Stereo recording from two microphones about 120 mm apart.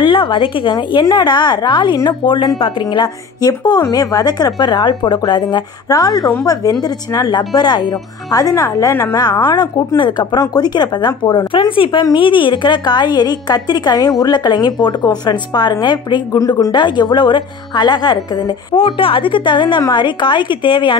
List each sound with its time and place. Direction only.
0.0 s a woman's voice: 45° left (ahead or behind)